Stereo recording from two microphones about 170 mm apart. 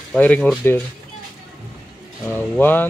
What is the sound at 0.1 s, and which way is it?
Speech, 5° left (ahead or behind).